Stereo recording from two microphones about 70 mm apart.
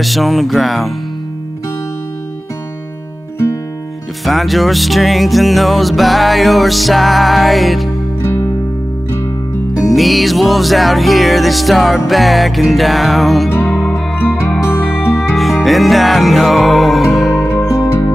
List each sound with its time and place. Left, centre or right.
0.0 s music: centre
4.2 s music: centre
8.2 s music: left
9.8 s music: centre
14.7 s music: left
15.3 s music: centre
17.4 s music: left